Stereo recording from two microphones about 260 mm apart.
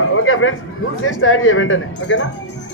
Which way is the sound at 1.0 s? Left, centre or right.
Left.